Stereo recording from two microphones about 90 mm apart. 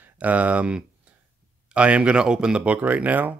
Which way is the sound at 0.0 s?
15° right (ahead or behind).